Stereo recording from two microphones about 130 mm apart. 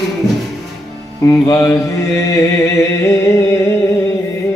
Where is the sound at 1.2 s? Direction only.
25° left (ahead or behind).